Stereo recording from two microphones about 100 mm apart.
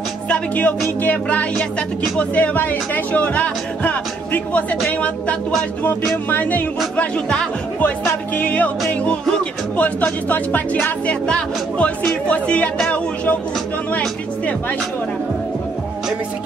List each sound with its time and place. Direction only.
0.3 s speech: 15° left (ahead or behind)
9.8 s speech: 15° left (ahead or behind)